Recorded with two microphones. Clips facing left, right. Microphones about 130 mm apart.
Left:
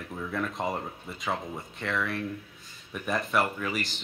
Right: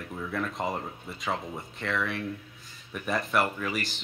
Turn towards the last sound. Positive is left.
turn(degrees=0)  # may be behind; listen again after turning